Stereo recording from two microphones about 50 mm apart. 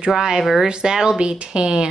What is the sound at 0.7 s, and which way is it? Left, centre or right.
Speech, centre.